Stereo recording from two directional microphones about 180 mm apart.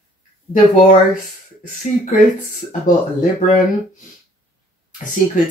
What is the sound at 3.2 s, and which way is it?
Speech, 45° left (ahead or behind).